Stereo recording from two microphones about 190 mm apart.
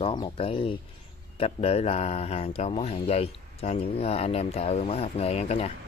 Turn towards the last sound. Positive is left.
turn(degrees=30)  # may be behind; listen again after turning